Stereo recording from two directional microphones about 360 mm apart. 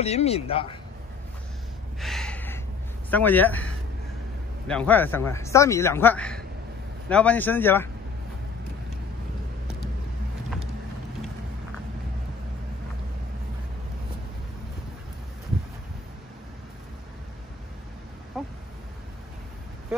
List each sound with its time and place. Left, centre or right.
0.0 s speech: centre
2.0 s gasp: centre
3.1 s speech: centre
18.4 s a sound: centre